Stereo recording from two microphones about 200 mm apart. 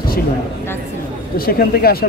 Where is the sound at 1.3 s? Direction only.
50° left (ahead or behind).